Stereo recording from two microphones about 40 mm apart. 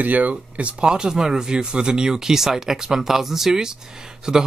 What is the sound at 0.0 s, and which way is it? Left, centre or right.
Speech, right.